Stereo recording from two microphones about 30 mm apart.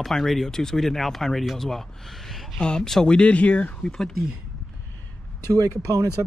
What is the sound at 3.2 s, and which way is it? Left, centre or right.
Speech, left.